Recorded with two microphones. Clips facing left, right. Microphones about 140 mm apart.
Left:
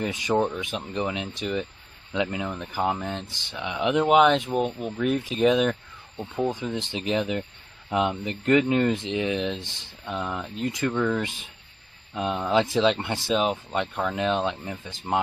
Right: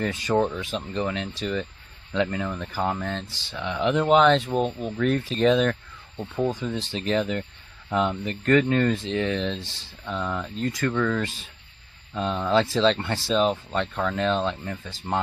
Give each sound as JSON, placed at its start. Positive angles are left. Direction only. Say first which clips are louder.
{"t": 0.0, "sound": "speech", "louder": "right 1 dB", "side_deg": 15}